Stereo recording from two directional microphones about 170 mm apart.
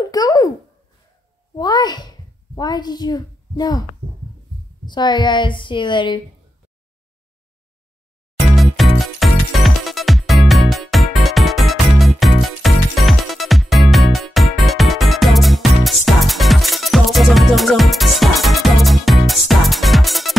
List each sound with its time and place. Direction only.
0.1 s a sound: 20° left (ahead or behind)
1.5 s a child's voice: 25° left (ahead or behind)
4.8 s a woman's voice: 25° left (ahead or behind)
8.5 s music: centre (ahead or behind)